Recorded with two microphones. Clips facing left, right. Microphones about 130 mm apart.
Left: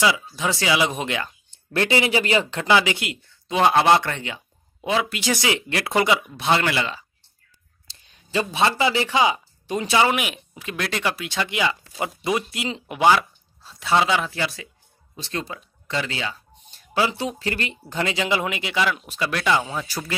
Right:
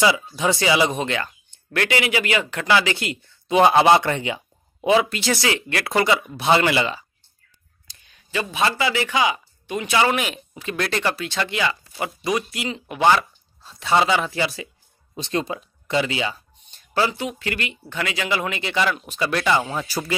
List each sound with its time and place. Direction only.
0.0 s speech: centre (ahead or behind)
1.7 s speech: 25° left (ahead or behind)
3.4 s speech: 5° right (ahead or behind)
5.1 s speech: 15° left (ahead or behind)
6.3 s speech: 5° right (ahead or behind)
7.9 s speech: 30° left (ahead or behind)
9.9 s speech: 10° left (ahead or behind)
13.7 s speech: centre (ahead or behind)
15.1 s speech: 20° right (ahead or behind)
16.7 s a sound: 10° left (ahead or behind)
17.1 s speech: 30° left (ahead or behind); by 20.2 s 5° right (ahead or behind)